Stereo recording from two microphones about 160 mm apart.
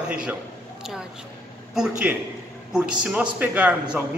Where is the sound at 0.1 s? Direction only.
5° right (ahead or behind).